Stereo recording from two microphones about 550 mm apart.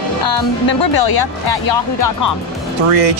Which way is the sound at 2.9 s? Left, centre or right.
Right.